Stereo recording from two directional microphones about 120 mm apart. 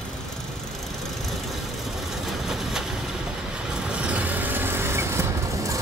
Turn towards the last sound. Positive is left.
turn(degrees=-25)  # may be behind; listen again after turning